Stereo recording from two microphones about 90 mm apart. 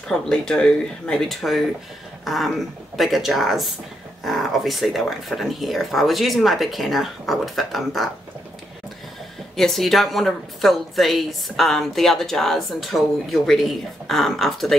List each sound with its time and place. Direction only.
0.1 s a woman's voice: 5° left (ahead or behind)
9.6 s a woman's voice: 5° left (ahead or behind)